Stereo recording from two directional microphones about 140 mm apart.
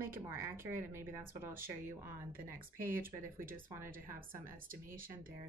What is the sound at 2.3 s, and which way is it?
Speech, 90° right.